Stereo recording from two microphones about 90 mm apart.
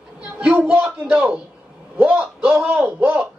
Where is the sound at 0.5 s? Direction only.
20° right (ahead or behind).